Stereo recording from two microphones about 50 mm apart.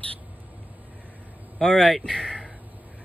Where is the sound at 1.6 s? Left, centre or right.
Centre.